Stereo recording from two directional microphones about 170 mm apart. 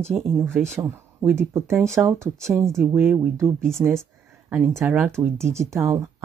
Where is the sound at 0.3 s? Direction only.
15° right (ahead or behind).